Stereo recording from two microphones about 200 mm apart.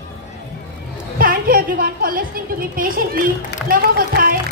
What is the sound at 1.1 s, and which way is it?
A man's voice, 45° right (ahead or behind).